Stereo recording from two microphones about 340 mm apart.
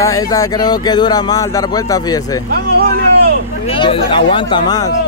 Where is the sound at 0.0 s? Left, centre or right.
Centre.